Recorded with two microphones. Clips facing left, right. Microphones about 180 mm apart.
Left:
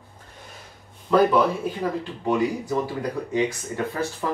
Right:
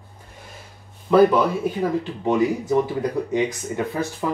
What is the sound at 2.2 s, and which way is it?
Speech, 20° right (ahead or behind).